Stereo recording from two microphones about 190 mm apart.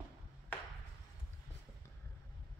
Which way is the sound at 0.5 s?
10° left (ahead or behind).